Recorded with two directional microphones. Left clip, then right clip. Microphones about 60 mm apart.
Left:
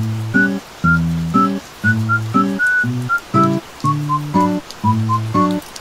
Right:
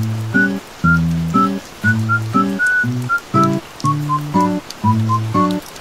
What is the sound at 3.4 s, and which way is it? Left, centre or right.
Music, right.